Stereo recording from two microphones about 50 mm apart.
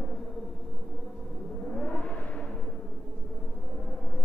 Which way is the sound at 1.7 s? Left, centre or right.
Left.